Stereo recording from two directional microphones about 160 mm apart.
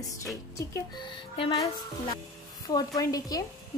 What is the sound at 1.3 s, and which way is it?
Speech, 30° left (ahead or behind).